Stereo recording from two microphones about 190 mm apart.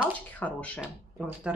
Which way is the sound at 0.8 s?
5° right (ahead or behind).